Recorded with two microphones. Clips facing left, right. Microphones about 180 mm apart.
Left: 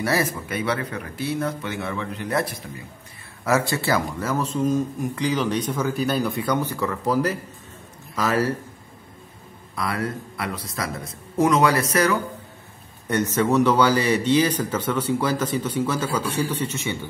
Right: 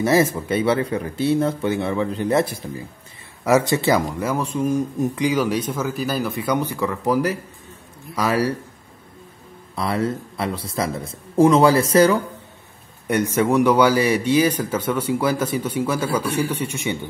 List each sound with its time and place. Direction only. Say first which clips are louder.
0.0 s speech: right 6 dB; 20° right (ahead or behind)
3.4 s a man's voice: right 5 dB; 20° right (ahead or behind); by 6.5 s centre (ahead or behind)
6.5 s a man's voice: right 2 dB; 15° right (ahead or behind)
9.8 s speech: right 4 dB; 25° right (ahead or behind)
13.0 s a man's voice: right 2 dB; 10° right (ahead or behind)